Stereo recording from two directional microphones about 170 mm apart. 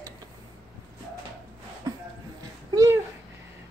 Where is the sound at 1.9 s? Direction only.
20° right (ahead or behind).